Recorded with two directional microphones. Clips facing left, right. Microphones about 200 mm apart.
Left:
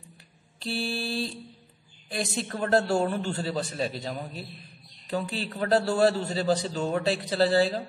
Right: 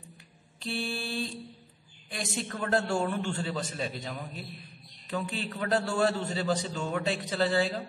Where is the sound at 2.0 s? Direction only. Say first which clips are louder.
Left 4 dB; 35° left (ahead or behind).